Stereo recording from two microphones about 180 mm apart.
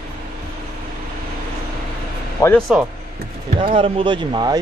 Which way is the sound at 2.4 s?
15° left (ahead or behind).